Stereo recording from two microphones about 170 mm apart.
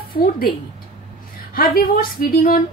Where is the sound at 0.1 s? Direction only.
60° left (ahead or behind).